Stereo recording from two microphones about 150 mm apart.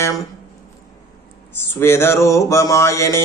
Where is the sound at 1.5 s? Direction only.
15° left (ahead or behind).